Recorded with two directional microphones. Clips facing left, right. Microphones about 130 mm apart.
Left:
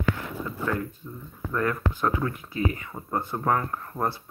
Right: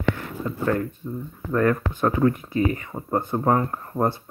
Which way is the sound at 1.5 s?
40° right (ahead or behind).